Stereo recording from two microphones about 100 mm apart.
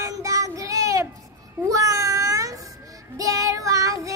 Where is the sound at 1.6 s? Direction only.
35° right (ahead or behind).